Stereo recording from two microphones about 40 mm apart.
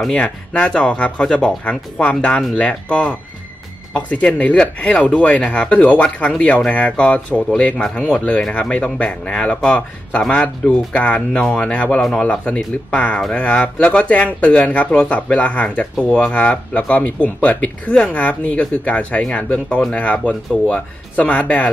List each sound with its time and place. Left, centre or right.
0.1 s speech: left
5.7 s speech: left
7.7 s speech: centre; by 21.6 s left